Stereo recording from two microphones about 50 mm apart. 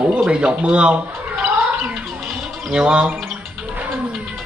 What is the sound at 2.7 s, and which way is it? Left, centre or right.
Speech, centre.